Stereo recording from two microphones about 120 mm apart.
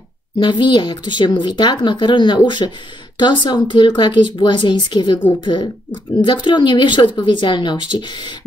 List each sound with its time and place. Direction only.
0.4 s speech: 40° left (ahead or behind)